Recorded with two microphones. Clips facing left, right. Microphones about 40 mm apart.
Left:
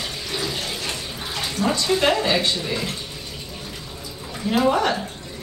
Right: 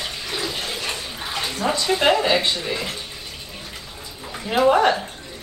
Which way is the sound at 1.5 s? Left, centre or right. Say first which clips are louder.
Left 1 dB; right.